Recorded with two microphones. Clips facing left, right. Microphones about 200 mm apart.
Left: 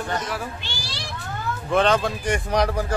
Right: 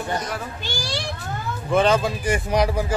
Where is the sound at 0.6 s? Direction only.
45° right (ahead or behind).